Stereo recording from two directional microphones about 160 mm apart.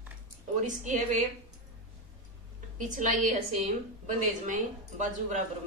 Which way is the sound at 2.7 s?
55° right (ahead or behind).